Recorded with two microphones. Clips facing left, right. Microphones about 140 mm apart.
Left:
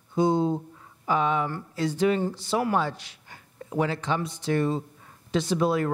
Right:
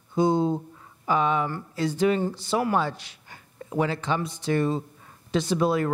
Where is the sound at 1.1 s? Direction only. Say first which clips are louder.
Right 1 dB; 15° right (ahead or behind).